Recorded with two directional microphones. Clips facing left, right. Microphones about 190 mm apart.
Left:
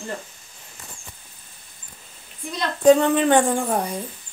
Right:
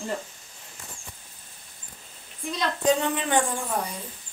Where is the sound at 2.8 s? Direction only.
55° left (ahead or behind).